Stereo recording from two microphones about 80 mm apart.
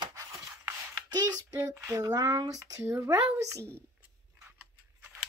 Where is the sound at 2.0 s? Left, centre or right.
Right.